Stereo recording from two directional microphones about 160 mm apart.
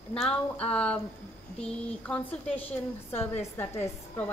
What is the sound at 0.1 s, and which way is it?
Speech, 5° left (ahead or behind).